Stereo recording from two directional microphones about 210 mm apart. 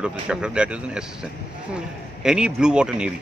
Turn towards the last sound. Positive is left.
turn(degrees=-5)  # may be behind; listen again after turning